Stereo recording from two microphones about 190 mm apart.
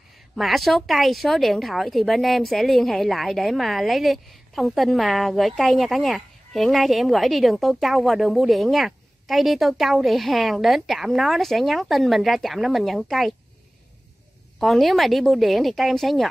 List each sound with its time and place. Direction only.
0.4 s speech: centre (ahead or behind)
14.6 s speech: centre (ahead or behind)